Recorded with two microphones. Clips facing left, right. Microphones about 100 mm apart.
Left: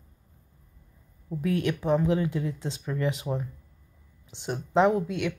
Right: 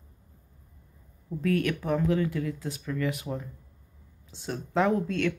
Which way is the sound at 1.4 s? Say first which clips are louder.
Even; 20° left (ahead or behind).